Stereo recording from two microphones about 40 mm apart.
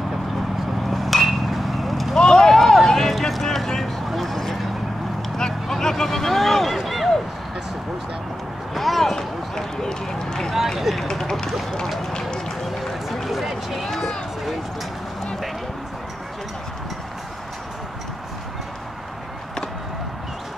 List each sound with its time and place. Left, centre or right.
0.8 s vehicle: centre
2.1 s vehicle: left
2.4 s run: centre
2.9 s a sound: centre
8.7 s a sound: centre
9.1 s run: centre
10.8 s run: centre
11.1 s a sound: centre
12.0 s run: centre
12.6 s run: centre
13.8 s run: centre